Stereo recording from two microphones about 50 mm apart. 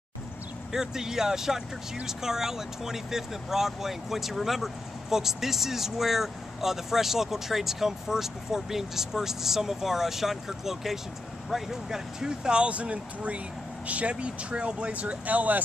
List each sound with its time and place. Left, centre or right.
0.7 s speech: centre; by 15.6 s right